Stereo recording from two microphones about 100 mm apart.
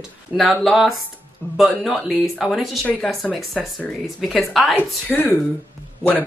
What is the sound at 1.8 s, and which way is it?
Speech, centre (ahead or behind).